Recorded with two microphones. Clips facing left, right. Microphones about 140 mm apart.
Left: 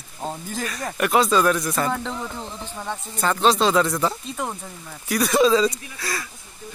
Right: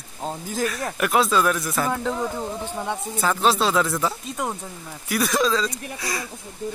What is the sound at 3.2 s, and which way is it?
Speech, 5° right (ahead or behind).